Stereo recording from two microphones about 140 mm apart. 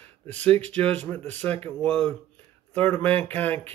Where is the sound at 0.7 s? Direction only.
10° left (ahead or behind).